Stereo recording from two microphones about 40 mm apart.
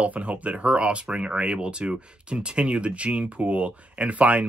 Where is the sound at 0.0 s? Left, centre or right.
Right.